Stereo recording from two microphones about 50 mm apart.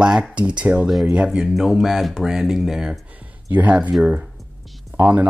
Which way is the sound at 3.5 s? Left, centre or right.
Right.